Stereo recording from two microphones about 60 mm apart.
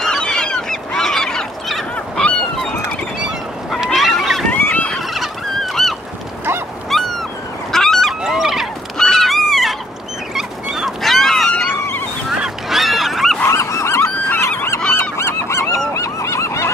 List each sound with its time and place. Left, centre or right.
0.2 s goose: centre
3.9 s a sound: centre
4.5 s fowl: left
5.1 s fowl: centre
6.9 s a sound: centre
7.7 s goose: centre
8.2 s a sound: centre
10.3 s dog: centre
11.0 s goose: centre
12.6 s goose: centre
13.6 s goose: left
16.0 s goose: left